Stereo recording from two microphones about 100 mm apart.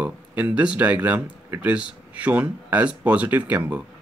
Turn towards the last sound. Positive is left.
turn(degrees=-15)  # may be behind; listen again after turning